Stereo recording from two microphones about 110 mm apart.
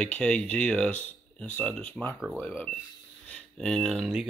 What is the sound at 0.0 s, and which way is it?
Speech, 10° left (ahead or behind).